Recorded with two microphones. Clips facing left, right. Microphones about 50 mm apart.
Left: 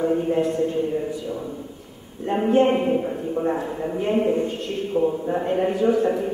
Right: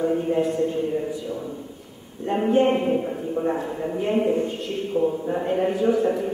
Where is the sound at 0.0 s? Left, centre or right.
Centre.